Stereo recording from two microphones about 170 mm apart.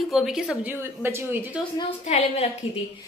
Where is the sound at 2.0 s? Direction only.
40° left (ahead or behind).